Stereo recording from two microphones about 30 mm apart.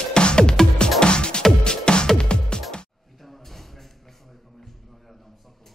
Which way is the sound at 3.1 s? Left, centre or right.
Centre.